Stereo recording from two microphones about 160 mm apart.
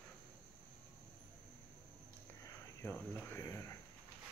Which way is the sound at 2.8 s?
15° left (ahead or behind).